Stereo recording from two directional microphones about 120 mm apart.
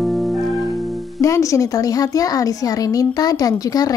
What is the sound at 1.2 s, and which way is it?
A woman's voice, 25° left (ahead or behind).